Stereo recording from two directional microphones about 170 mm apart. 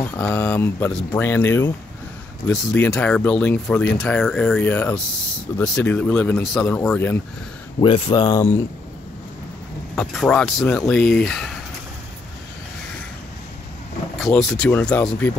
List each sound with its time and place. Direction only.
0.0 s speech: 10° left (ahead or behind)
7.8 s speech: 30° left (ahead or behind)
9.9 s speech: 5° left (ahead or behind)
14.1 s speech: centre (ahead or behind)